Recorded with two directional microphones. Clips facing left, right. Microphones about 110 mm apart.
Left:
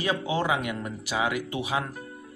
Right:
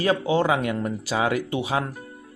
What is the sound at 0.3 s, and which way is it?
Speech, 30° right (ahead or behind).